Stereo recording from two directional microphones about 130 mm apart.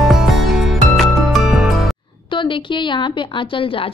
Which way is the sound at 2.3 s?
40° left (ahead or behind).